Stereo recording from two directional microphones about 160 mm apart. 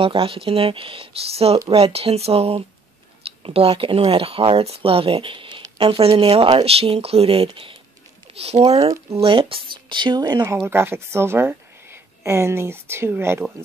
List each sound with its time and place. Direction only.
0.0 s speech: 35° right (ahead or behind)
8.8 s speech: 20° right (ahead or behind)
9.2 s speech: 35° right (ahead or behind); by 13.7 s 15° right (ahead or behind)